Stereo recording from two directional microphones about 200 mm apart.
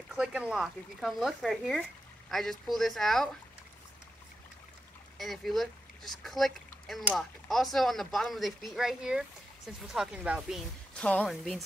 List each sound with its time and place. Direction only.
0.1 s speech: 5° right (ahead or behind)
5.1 s speech: centre (ahead or behind)
11.0 s speech: 5° left (ahead or behind)